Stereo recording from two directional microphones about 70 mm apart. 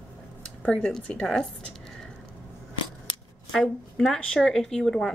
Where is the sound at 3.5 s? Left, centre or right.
Centre.